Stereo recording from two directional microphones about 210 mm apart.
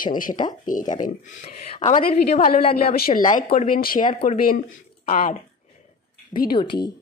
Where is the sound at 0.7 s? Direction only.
40° left (ahead or behind).